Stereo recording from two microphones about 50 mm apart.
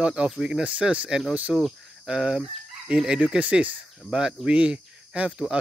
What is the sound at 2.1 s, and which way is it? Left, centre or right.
Speech, centre.